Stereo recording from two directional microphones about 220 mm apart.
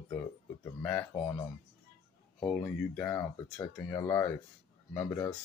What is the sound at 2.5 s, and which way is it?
Speech, 10° left (ahead or behind).